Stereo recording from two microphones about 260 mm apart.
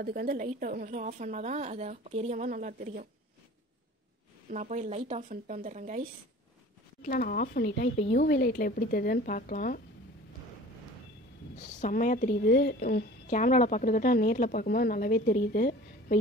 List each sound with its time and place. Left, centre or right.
0.0 s a woman's voice: right
4.5 s a woman's voice: right
7.0 s a woman's voice: left
11.5 s a woman's voice: left